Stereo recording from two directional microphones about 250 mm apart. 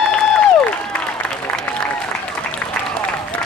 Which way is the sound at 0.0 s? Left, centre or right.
Centre.